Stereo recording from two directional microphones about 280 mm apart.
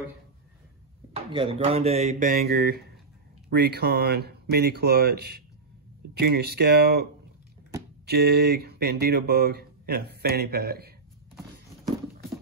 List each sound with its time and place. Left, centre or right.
1.1 s speech: centre